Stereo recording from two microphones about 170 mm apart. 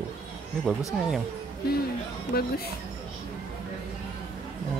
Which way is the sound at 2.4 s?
65° left (ahead or behind).